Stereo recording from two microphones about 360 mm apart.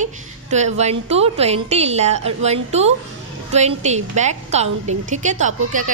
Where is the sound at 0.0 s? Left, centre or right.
Centre.